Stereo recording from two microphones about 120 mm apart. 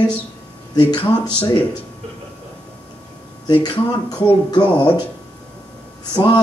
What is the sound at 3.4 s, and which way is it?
Speech, 35° left (ahead or behind).